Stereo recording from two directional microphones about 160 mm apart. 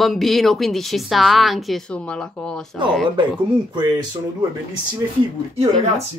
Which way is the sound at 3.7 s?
25° right (ahead or behind).